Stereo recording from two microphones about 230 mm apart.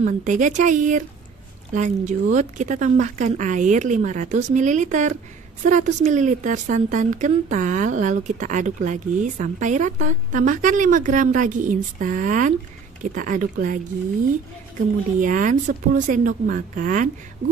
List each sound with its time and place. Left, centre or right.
0.0 s a woman's voice: right
15.1 s a woman's voice: right